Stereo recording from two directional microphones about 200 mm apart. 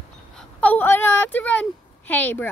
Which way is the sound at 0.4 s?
5° left (ahead or behind).